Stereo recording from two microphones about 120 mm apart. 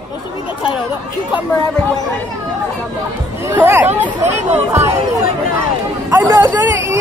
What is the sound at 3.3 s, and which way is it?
Speech, 20° right (ahead or behind).